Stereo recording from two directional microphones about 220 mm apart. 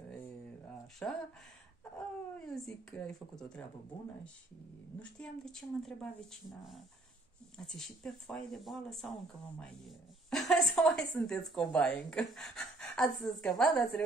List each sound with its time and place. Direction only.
1.0 s speech: 5° left (ahead or behind)
2.3 s a woman's voice: centre (ahead or behind)
4.9 s a woman's voice: 5° left (ahead or behind)
7.5 s a woman's voice: centre (ahead or behind)